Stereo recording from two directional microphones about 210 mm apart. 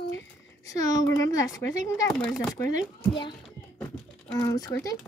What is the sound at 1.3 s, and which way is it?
Speech, 15° left (ahead or behind).